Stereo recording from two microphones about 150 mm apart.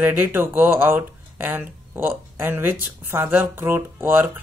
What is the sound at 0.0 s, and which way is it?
Speech, 15° right (ahead or behind).